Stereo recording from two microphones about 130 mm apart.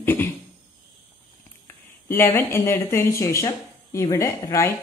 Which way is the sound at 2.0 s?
15° left (ahead or behind).